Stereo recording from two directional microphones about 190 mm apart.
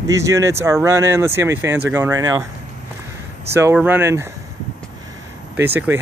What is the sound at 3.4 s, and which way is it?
Speech, 10° right (ahead or behind).